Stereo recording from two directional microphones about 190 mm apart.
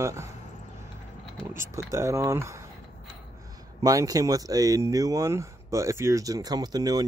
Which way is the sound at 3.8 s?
20° right (ahead or behind).